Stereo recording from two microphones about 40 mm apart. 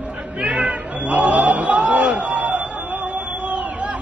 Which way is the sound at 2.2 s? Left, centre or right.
Right.